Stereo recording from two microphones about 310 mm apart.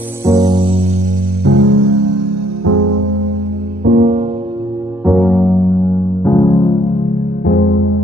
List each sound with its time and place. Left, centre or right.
0.2 s music: centre
1.4 s music: right
3.8 s music: right
5.0 s music: centre
7.4 s music: left